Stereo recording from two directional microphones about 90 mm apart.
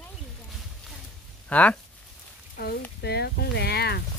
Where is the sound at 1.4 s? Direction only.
15° left (ahead or behind).